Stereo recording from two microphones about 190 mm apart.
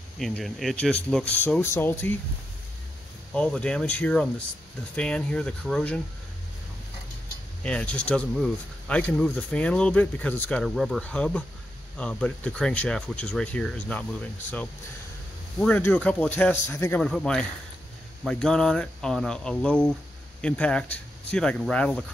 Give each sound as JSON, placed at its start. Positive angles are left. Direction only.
{"t": 0.2, "sound": "speech", "side_deg": 0}
{"t": 3.3, "sound": "speech", "side_deg": 5}
{"t": 7.6, "sound": "speech", "side_deg": 5}
{"t": 15.6, "sound": "speech", "side_deg": 10}